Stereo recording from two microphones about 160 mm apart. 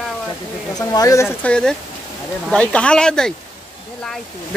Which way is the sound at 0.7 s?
25° left (ahead or behind).